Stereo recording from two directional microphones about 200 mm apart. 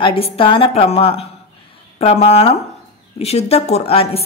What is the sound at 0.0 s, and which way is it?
A woman's voice, 25° left (ahead or behind).